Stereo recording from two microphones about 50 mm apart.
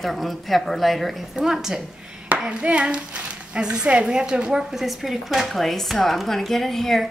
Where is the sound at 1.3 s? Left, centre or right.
Centre.